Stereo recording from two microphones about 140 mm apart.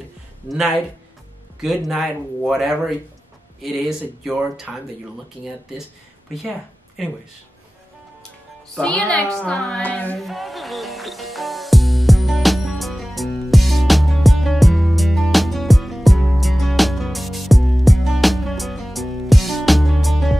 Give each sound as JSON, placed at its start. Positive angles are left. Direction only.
{"t": 0.5, "sound": "speech", "side_deg": 0}
{"t": 1.9, "sound": "speech", "side_deg": -5}
{"t": 7.0, "sound": "speech", "side_deg": 0}
{"t": 8.7, "sound": "a woman's voice", "side_deg": 5}
{"t": 10.1, "sound": "music", "side_deg": 0}